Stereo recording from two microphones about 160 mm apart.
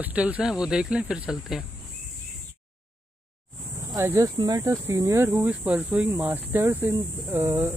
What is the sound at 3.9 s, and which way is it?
Speech, 20° right (ahead or behind).